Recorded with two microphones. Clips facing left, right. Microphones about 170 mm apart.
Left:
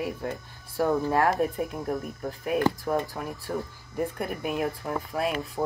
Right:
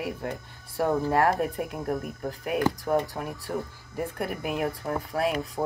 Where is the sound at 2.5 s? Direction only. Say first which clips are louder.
Even; 20° right (ahead or behind).